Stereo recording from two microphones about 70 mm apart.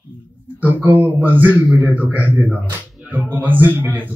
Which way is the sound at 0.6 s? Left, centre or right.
Right.